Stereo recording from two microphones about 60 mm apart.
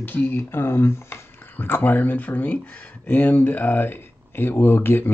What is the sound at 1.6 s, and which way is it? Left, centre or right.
Speech, left.